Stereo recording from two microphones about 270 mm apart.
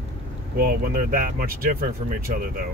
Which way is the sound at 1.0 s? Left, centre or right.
Right.